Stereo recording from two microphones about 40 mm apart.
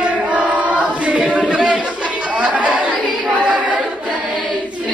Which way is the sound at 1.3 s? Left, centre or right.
Right.